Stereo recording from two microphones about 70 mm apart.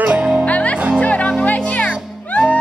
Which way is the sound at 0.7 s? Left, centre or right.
Centre.